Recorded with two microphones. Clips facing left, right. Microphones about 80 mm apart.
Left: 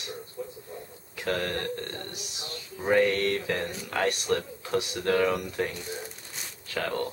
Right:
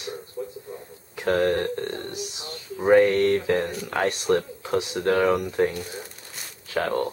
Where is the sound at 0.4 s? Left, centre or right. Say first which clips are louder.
Right 4 dB; right.